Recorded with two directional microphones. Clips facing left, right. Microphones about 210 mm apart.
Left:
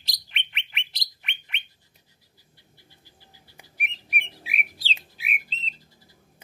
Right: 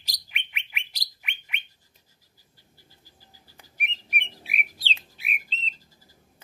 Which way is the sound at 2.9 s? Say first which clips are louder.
Left 1 dB; 40° right (ahead or behind).